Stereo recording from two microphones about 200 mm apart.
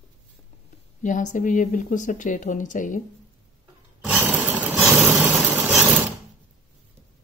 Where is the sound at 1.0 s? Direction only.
40° left (ahead or behind).